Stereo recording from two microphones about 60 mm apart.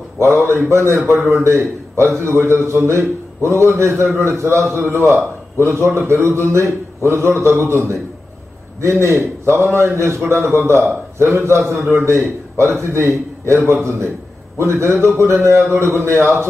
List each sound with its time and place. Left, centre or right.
0.2 s a man's voice: right